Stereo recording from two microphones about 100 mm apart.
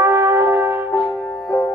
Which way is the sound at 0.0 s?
25° right (ahead or behind).